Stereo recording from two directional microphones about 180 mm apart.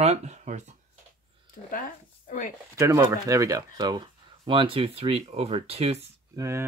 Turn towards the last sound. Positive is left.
turn(degrees=-15)  # may be behind; listen again after turning